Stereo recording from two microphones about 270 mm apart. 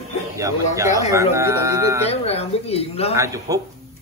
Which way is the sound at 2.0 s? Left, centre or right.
Left.